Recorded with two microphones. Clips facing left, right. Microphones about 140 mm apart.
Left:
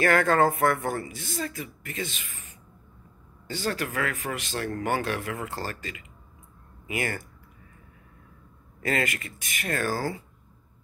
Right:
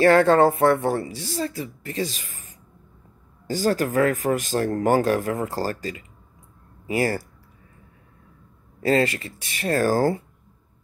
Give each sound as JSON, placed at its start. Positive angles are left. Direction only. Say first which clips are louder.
{"t": 0.0, "sound": "speech", "louder": "right 6 dB", "side_deg": -30}
{"t": 8.8, "sound": "speech", "louder": "right 8 dB", "side_deg": -30}